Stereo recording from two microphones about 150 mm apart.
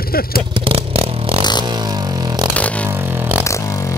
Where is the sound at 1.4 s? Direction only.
30° left (ahead or behind).